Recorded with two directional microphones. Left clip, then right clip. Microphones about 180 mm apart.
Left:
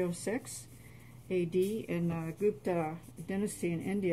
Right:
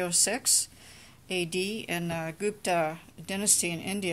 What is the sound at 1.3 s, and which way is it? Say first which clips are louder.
Speech: right 1 dB; 25° right (ahead or behind).